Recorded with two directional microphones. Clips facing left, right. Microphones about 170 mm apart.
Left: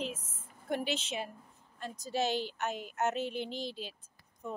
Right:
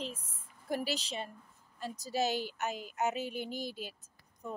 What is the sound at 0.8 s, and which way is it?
Speech, 35° right (ahead or behind).